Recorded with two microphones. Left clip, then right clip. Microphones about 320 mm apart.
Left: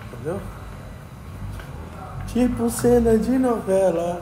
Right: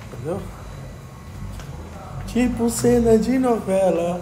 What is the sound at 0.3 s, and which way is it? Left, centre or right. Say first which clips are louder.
Speech: right 1 dB; centre.